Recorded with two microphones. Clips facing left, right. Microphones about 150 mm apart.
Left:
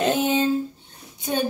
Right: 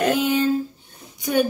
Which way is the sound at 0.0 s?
20° left (ahead or behind).